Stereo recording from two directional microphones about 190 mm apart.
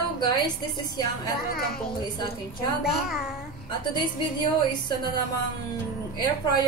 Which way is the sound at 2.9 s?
Centre (ahead or behind).